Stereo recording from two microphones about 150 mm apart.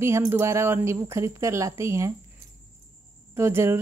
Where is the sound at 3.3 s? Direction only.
15° right (ahead or behind).